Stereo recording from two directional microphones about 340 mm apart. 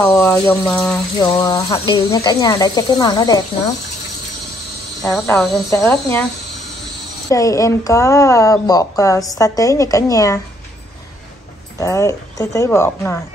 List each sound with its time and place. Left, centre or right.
0.0 s speech: centre
5.0 s speech: centre
7.2 s speech: centre
11.8 s speech: centre